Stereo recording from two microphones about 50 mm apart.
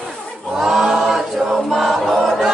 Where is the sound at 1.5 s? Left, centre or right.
Centre.